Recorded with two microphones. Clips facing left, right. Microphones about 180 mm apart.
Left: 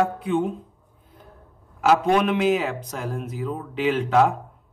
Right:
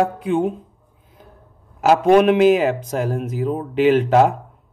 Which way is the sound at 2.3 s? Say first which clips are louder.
Right 7 dB; 70° right (ahead or behind).